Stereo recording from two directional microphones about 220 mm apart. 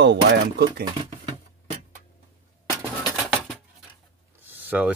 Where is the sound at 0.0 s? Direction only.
50° right (ahead or behind).